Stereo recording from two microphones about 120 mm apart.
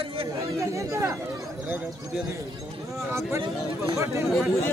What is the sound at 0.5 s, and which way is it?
Speech, 25° right (ahead or behind).